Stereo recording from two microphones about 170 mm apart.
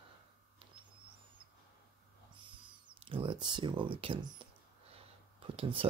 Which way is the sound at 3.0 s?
30° right (ahead or behind).